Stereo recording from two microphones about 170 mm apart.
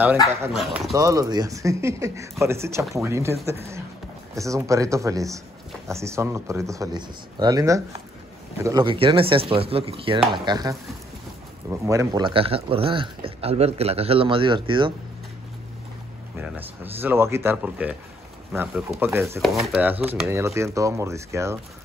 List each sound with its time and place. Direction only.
0.5 s speech: centre (ahead or behind)
0.9 s speech: 20° right (ahead or behind)
11.8 s speech: 20° right (ahead or behind)
16.3 s speech: 10° right (ahead or behind)
19.4 s speech: centre (ahead or behind)